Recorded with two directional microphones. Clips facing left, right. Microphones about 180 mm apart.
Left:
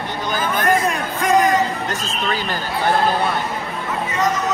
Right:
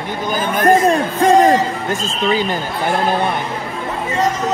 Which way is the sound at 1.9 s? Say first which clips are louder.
Right 6 dB; 15° right (ahead or behind).